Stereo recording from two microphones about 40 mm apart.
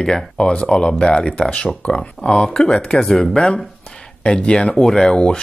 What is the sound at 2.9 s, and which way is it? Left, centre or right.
Speech, centre.